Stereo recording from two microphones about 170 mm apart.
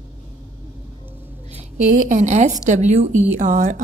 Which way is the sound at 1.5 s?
45° right (ahead or behind).